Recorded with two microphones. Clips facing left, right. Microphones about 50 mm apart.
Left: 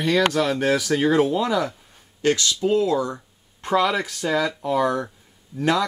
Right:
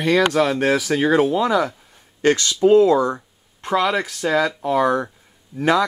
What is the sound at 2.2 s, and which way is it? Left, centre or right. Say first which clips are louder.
Speech: right 5 dB; right.